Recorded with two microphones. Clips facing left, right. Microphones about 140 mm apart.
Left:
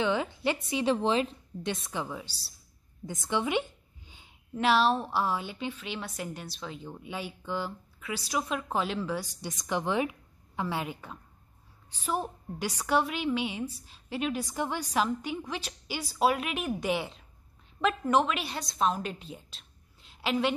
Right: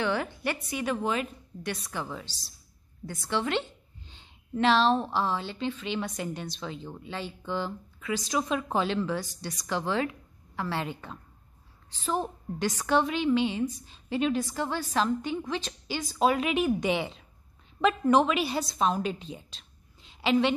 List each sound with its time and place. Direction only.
0.0 s a woman's voice: 20° left (ahead or behind)
1.9 s a woman's voice: 15° left (ahead or behind)
14.4 s a woman's voice: 15° left (ahead or behind)